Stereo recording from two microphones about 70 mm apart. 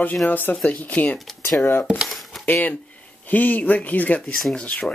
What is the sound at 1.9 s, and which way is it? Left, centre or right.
Speech, centre.